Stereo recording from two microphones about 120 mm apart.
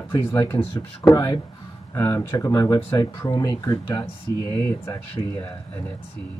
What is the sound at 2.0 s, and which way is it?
Speech, 20° left (ahead or behind).